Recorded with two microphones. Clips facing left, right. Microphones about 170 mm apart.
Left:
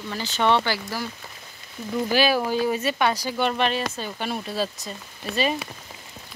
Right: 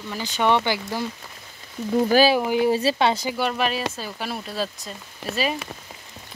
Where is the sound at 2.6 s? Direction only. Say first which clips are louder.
Right 3 dB; 30° right (ahead or behind).